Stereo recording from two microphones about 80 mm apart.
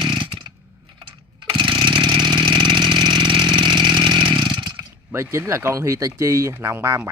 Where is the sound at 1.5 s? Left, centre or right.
Right.